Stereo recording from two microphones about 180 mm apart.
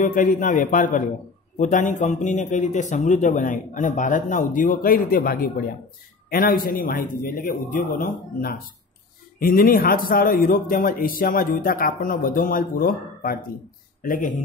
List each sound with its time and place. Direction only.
0.0 s speech: 45° left (ahead or behind)